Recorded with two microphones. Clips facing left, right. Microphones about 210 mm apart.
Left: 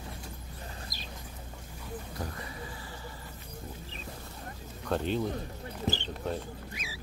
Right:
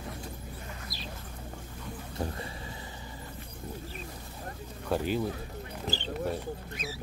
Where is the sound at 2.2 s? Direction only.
25° right (ahead or behind).